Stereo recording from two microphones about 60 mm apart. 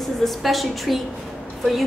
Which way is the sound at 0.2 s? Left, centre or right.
Centre.